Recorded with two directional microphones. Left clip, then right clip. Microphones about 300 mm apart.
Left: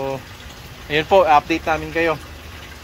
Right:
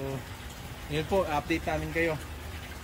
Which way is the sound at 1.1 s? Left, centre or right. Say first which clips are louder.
Left 15 dB; left.